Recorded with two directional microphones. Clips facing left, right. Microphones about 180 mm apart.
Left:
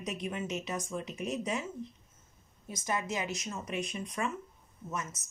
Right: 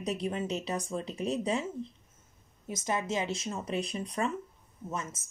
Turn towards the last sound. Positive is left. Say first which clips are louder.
# right 2 dB
turn(degrees=-30)  # may be behind; listen again after turning